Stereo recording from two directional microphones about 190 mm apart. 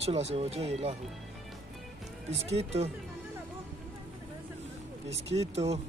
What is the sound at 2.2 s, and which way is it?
Speech, 35° right (ahead or behind).